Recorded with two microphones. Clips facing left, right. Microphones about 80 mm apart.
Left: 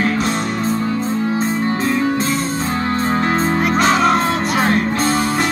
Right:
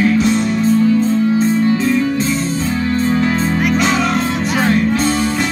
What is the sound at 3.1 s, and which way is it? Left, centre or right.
Music, left.